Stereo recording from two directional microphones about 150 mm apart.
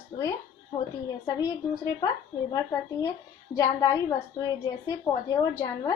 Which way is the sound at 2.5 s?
20° left (ahead or behind).